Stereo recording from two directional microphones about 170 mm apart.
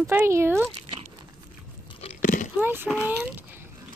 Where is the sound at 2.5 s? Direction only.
10° right (ahead or behind).